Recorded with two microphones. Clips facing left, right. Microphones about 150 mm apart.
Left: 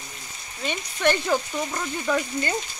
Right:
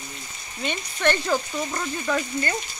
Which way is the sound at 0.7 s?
10° left (ahead or behind).